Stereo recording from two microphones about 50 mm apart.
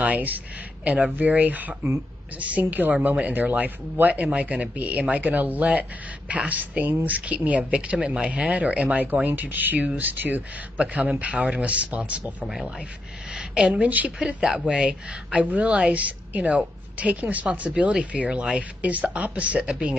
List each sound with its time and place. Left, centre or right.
0.0 s a woman's voice: right; by 13.8 s centre
13.8 s speech: right
14.2 s a man's voice: centre
15.4 s speech: right
19.7 s a man's voice: centre